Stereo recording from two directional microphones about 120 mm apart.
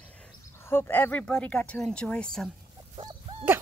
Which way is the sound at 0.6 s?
20° left (ahead or behind).